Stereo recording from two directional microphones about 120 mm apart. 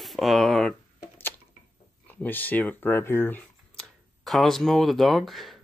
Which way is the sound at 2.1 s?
15° left (ahead or behind).